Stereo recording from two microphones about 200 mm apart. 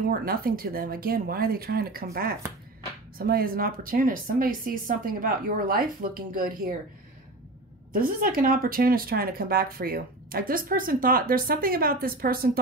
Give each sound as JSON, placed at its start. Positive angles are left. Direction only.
{"t": 0.1, "sound": "speech", "side_deg": -45}
{"t": 3.2, "sound": "speech", "side_deg": -50}
{"t": 7.9, "sound": "speech", "side_deg": -45}